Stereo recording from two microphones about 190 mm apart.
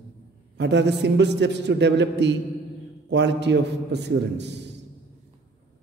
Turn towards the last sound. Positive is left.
turn(degrees=-65)  # may be behind; listen again after turning